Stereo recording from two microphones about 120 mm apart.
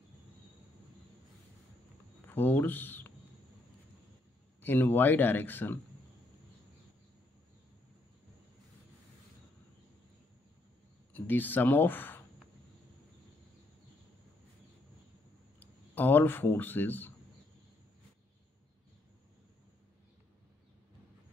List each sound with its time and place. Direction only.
2.2 s speech: 15° left (ahead or behind)
4.6 s speech: 15° left (ahead or behind)
11.1 s speech: 15° left (ahead or behind)
15.6 s speech: 15° left (ahead or behind)